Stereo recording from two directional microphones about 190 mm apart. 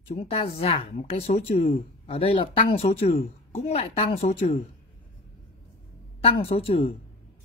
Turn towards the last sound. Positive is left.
turn(degrees=30)  # may be behind; listen again after turning